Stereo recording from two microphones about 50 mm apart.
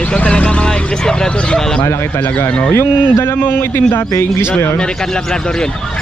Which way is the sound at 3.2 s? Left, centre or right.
Left.